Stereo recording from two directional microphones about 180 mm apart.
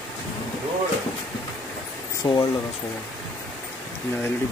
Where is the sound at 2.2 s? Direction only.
25° left (ahead or behind).